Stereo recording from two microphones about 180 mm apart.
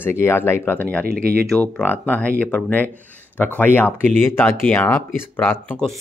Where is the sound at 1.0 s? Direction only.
55° right (ahead or behind).